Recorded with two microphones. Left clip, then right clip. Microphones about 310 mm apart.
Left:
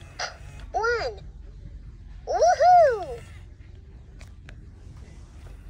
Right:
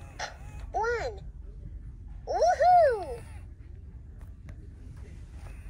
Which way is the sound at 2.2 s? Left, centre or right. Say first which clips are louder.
Left 5 dB; centre.